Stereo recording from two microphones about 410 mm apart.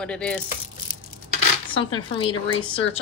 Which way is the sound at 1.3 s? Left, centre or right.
Centre.